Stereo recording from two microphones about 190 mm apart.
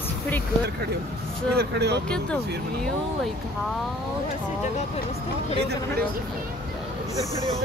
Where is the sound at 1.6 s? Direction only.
60° right (ahead or behind).